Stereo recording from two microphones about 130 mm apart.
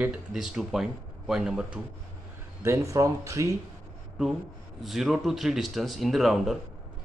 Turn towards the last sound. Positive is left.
turn(degrees=0)  # may be behind; listen again after turning